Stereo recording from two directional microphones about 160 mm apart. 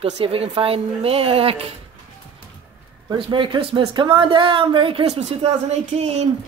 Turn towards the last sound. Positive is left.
turn(degrees=-40)  # may be behind; listen again after turning